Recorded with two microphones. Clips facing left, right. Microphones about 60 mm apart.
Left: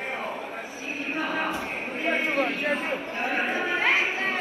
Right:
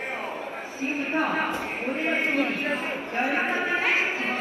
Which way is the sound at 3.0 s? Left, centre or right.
Right.